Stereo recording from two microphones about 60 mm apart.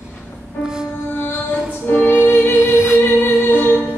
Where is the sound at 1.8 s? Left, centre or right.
Left.